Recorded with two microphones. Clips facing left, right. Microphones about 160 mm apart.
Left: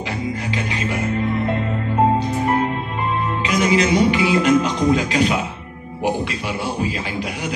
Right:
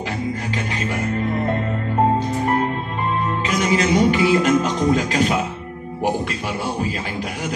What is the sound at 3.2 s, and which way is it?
Speech, 45° right (ahead or behind).